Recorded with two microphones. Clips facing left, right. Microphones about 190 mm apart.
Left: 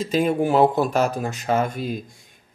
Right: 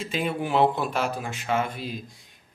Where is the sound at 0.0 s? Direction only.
40° left (ahead or behind).